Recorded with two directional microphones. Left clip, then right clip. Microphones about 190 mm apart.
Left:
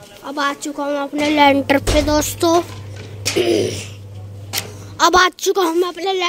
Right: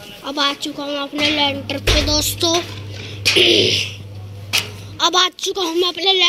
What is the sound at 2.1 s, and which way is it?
Speech, 25° left (ahead or behind).